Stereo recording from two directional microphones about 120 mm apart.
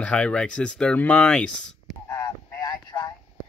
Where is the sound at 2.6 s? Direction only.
30° left (ahead or behind).